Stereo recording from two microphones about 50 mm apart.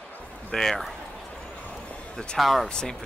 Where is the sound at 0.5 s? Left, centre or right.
Centre.